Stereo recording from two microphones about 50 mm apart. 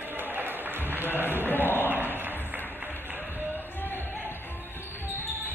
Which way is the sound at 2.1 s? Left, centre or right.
Right.